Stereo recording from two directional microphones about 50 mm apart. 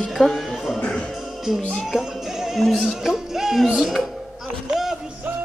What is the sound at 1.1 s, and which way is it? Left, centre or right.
Music, centre.